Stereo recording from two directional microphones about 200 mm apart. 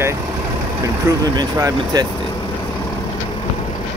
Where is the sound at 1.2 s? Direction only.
20° right (ahead or behind).